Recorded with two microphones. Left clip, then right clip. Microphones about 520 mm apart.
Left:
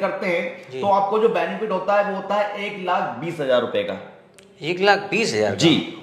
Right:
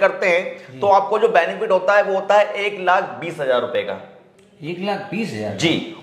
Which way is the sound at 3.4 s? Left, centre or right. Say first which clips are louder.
Right 1 dB; right.